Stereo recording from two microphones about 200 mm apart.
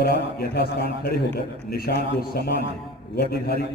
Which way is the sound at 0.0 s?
55° left (ahead or behind).